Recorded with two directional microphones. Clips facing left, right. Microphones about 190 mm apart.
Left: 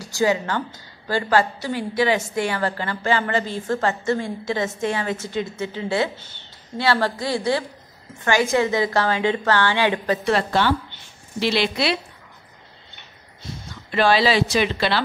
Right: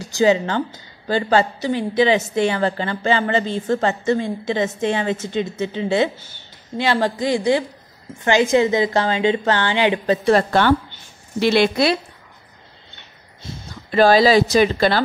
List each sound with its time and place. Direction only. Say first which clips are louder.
0.0 s a woman's voice: right 4 dB; 20° right (ahead or behind)
6.1 s a woman's voice: even; 10° right (ahead or behind)
10.3 s a woman's voice: right 5 dB; 50° right (ahead or behind)
13.8 s speech: right 5 dB; 40° right (ahead or behind)